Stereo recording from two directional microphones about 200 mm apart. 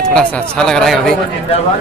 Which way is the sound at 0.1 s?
5° left (ahead or behind).